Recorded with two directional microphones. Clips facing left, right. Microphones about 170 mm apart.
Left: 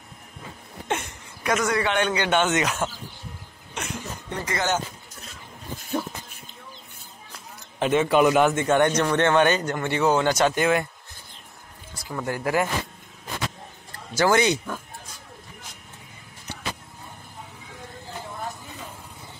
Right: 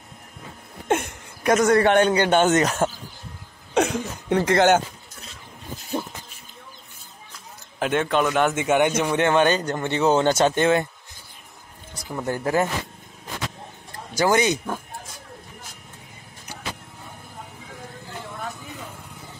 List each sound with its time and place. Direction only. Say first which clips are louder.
0.8 s speech: right 6 dB; 50° right (ahead or behind)
3.7 s speech: right 12 dB; 85° right; by 4.8 s 65° right (ahead or behind)
7.8 s a man's voice: left 3 dB; centre (ahead or behind)
8.5 s speech: even; 10° right (ahead or behind)
9.4 s speech: right 1 dB; 35° right (ahead or behind)
9.8 s speech: right 2 dB; 20° right (ahead or behind)
11.9 s speech: right 2 dB; 20° right (ahead or behind)
14.1 s speech: even; 15° right (ahead or behind)